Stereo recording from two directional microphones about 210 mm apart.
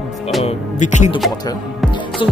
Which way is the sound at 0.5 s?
35° left (ahead or behind).